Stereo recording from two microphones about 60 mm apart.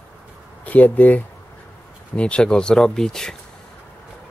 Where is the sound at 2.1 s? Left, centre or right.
Centre.